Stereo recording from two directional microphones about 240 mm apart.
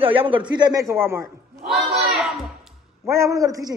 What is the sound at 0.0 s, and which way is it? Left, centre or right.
Speech, right.